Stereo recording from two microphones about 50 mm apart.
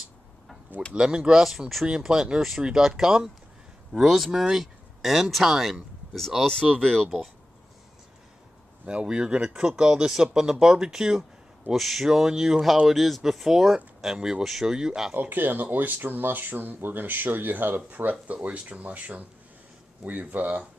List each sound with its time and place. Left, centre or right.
0.9 s speech: centre
1.9 s speech: centre
6.4 s speech: centre
8.8 s speech: centre
14.4 s speech: centre
15.1 s speech: right